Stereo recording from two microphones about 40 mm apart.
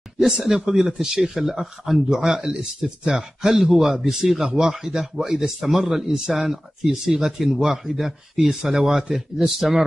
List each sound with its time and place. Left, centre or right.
0.2 s speech: centre